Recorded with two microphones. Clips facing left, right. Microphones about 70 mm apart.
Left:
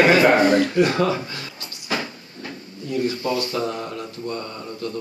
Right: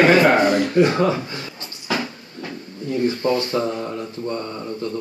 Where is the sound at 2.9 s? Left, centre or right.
Right.